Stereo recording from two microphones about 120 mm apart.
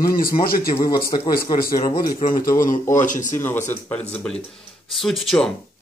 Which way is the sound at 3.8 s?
15° left (ahead or behind).